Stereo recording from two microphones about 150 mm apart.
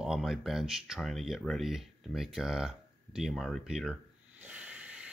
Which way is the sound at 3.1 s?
Centre (ahead or behind).